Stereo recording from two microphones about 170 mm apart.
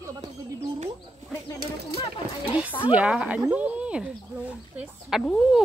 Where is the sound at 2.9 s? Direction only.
5° right (ahead or behind).